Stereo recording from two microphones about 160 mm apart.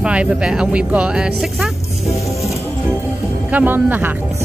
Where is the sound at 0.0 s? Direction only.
5° right (ahead or behind).